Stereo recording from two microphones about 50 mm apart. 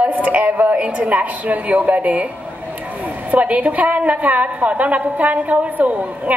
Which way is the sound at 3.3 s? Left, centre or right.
Right.